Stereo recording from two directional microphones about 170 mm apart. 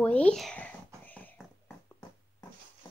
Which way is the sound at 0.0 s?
10° left (ahead or behind).